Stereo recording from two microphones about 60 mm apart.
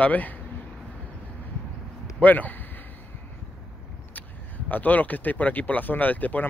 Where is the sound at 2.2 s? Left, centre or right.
Left.